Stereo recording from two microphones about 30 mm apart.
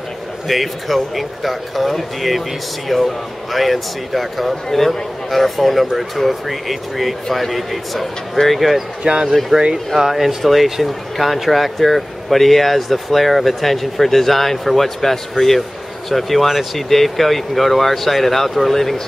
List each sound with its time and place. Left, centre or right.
0.5 s speech: centre
9.0 s speech: right
9.5 s speech: centre
9.9 s speech: centre
10.4 s speech: centre